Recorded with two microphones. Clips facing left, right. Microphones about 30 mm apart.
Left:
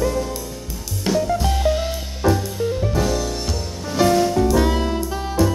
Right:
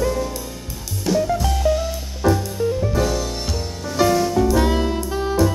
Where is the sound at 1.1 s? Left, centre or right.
Centre.